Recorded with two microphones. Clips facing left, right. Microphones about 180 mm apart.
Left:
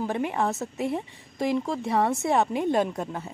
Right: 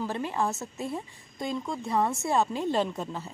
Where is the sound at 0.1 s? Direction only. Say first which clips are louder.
Left 4 dB; 15° left (ahead or behind).